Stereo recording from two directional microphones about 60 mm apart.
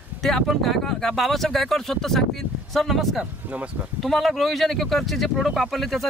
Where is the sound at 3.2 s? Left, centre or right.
Right.